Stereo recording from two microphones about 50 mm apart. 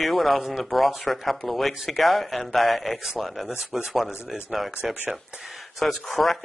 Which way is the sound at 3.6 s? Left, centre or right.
Centre.